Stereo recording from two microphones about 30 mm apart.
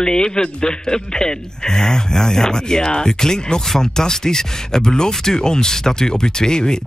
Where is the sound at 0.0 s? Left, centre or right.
Left.